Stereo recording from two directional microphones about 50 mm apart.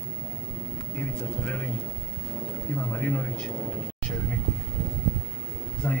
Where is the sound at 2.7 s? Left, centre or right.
Left.